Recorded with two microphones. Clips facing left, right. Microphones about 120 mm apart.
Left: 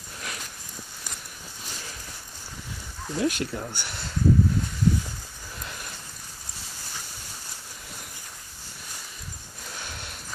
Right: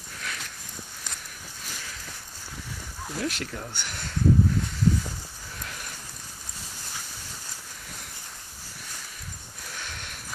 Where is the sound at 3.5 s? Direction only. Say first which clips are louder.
Left 3 dB; 20° left (ahead or behind).